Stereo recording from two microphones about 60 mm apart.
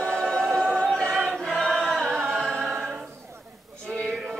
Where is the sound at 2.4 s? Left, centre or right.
Centre.